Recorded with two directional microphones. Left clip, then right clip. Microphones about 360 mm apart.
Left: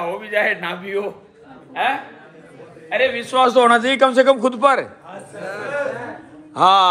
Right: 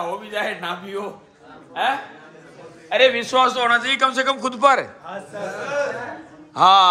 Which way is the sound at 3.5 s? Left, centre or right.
Centre.